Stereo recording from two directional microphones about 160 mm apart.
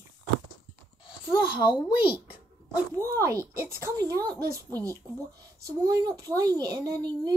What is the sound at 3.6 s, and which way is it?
Speech, 20° right (ahead or behind).